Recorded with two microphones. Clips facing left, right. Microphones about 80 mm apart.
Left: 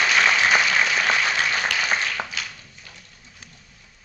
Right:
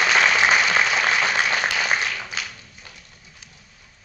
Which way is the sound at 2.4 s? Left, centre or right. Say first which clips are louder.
Right 1 dB; right.